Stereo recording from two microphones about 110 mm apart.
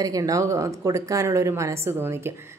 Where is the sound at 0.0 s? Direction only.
30° right (ahead or behind).